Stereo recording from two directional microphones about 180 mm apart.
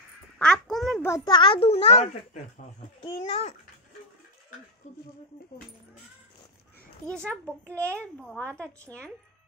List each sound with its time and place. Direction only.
0.4 s a sound: 5° left (ahead or behind)
1.2 s a child's voice: 25° left (ahead or behind)
4.8 s speech: 40° left (ahead or behind)
7.1 s a child's voice: 5° left (ahead or behind)